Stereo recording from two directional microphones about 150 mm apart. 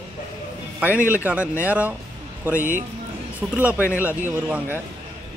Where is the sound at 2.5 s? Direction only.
65° right (ahead or behind).